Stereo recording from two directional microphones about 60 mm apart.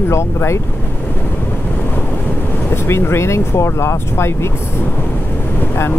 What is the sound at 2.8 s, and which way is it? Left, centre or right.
Speech, left.